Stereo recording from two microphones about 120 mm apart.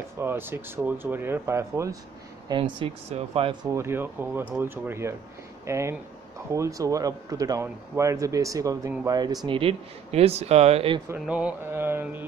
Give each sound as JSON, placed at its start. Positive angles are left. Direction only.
{"t": 0.2, "sound": "speech", "side_deg": -20}
{"t": 2.4, "sound": "speech", "side_deg": -40}
{"t": 3.1, "sound": "speech", "side_deg": -55}
{"t": 3.7, "sound": "speech", "side_deg": -20}
{"t": 9.6, "sound": "speech", "side_deg": -55}
{"t": 11.2, "sound": "mantra", "side_deg": -10}